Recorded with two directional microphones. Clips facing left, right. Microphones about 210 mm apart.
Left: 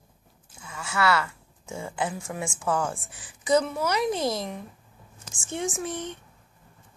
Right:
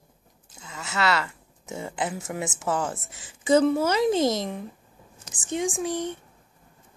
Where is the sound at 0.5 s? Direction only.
25° right (ahead or behind).